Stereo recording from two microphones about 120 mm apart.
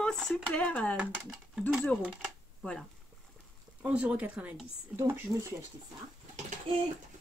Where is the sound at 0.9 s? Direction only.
5° right (ahead or behind).